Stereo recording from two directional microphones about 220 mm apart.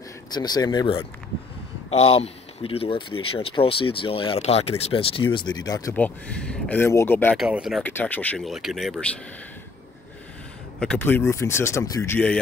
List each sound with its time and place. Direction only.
0.3 s speech: 20° left (ahead or behind)
7.3 s speech: 5° right (ahead or behind)
10.8 s speech: 5° left (ahead or behind)